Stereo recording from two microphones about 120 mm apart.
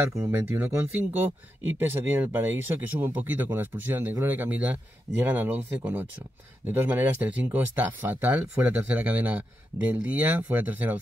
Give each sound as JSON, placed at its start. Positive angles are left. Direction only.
{"t": 0.1, "sound": "speech", "side_deg": -20}